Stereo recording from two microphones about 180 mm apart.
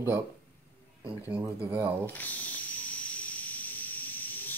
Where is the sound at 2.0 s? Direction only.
10° left (ahead or behind).